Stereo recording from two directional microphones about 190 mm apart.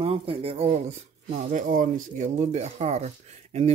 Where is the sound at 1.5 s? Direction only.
45° right (ahead or behind).